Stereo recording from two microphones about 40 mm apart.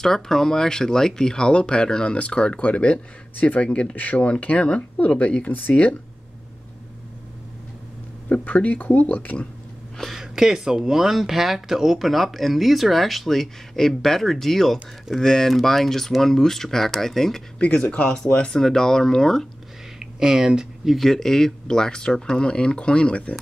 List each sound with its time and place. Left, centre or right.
0.0 s speech: centre; by 3.6 s left
3.6 s speech: left
3.9 s speech: left
4.3 s speech: left
8.5 s speech: left
10.1 s speech: centre
18.0 s speech: left
20.0 s speech: centre
20.9 s speech: centre; by 23.3 s left